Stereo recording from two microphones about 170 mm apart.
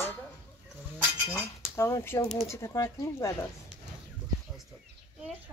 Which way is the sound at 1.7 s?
15° left (ahead or behind).